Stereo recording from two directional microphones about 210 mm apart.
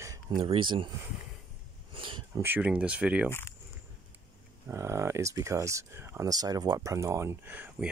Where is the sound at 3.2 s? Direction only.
10° left (ahead or behind).